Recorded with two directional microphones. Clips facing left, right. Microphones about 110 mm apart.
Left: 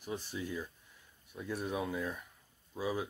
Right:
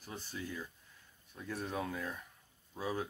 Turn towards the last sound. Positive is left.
turn(degrees=10)  # may be behind; listen again after turning